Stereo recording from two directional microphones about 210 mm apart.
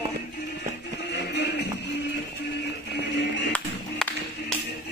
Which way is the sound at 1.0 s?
50° left (ahead or behind).